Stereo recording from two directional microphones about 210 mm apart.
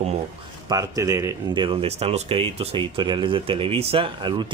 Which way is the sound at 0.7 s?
15° right (ahead or behind).